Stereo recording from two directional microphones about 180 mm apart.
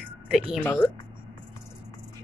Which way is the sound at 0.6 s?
10° left (ahead or behind).